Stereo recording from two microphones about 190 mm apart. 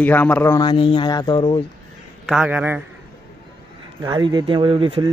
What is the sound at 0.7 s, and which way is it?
Speech, 25° left (ahead or behind).